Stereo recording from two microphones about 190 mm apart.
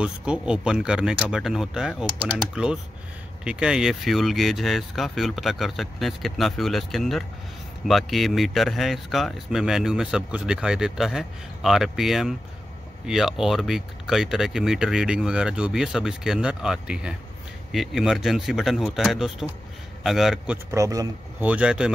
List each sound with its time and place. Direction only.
0.0 s speech: 5° right (ahead or behind)
20.7 s speech: 15° right (ahead or behind)
21.5 s speech: 5° right (ahead or behind)